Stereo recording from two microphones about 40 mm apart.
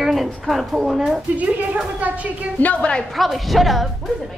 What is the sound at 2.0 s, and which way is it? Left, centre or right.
Speech, right.